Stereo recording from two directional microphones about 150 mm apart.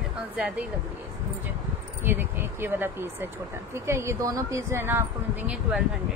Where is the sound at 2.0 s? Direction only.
15° right (ahead or behind).